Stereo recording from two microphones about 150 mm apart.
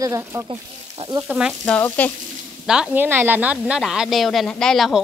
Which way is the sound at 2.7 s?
10° right (ahead or behind).